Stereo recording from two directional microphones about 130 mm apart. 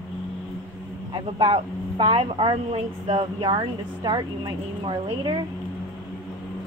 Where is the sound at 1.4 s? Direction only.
40° right (ahead or behind).